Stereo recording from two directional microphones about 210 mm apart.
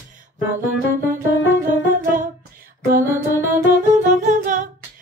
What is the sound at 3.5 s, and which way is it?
Music, 40° right (ahead or behind).